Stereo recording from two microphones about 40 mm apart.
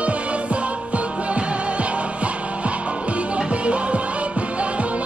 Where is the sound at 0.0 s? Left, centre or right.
Right.